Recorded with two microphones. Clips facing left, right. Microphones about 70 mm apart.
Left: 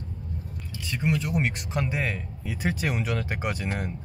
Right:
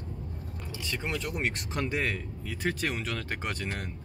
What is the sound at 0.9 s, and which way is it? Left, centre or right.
Speech, centre.